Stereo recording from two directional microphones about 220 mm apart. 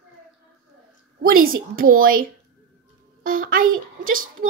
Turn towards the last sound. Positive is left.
turn(degrees=-40)  # may be behind; listen again after turning